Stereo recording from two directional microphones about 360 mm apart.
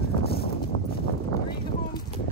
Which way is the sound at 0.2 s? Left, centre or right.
Left.